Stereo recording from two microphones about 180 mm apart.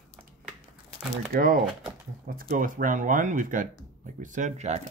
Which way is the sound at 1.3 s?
50° right (ahead or behind).